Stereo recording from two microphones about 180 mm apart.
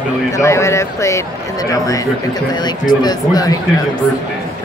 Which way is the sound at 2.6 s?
25° left (ahead or behind).